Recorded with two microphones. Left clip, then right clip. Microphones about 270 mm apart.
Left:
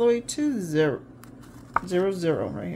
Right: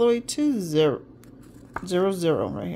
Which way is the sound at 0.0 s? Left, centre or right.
Right.